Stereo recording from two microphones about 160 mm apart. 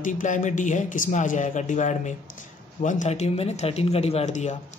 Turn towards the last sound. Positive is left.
turn(degrees=45)  # may be behind; listen again after turning